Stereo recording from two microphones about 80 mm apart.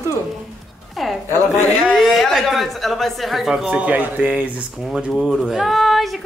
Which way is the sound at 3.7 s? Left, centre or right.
Centre.